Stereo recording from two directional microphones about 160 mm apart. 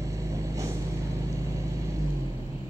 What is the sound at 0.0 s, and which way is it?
Vehicle, 20° right (ahead or behind).